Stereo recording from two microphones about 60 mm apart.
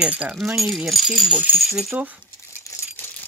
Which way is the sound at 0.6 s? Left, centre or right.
Centre.